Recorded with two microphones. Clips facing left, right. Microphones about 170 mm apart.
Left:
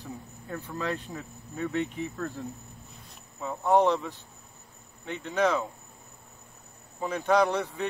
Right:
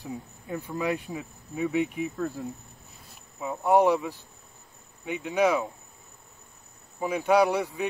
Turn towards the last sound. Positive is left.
turn(degrees=-10)  # may be behind; listen again after turning